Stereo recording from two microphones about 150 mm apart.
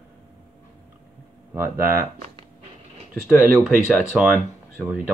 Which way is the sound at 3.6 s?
5° right (ahead or behind).